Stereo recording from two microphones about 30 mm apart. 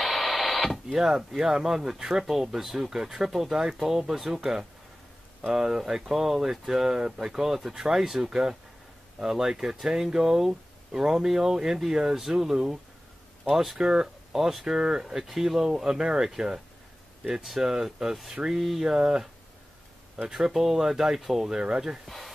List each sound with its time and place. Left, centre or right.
0.0 s a sound: centre
0.9 s speech: centre
13.7 s speech: right
15.7 s speech: right
18.4 s speech: right
18.8 s speech: right
20.2 s speech: centre
21.5 s speech: right
22.0 s speech: centre